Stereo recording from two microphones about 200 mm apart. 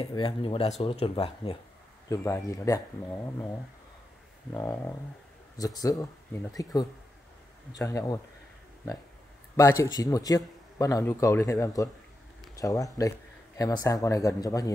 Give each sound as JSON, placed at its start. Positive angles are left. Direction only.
{"t": 0.0, "sound": "speech", "side_deg": 25}
{"t": 2.0, "sound": "a man's voice", "side_deg": 15}
{"t": 4.6, "sound": "a man's voice", "side_deg": 10}
{"t": 5.6, "sound": "a man's voice", "side_deg": 20}
{"t": 9.6, "sound": "a man's voice", "side_deg": 15}